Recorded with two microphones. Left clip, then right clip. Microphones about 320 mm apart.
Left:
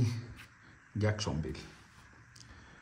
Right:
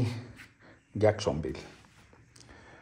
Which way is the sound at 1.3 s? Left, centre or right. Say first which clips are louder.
Right 9 dB; right.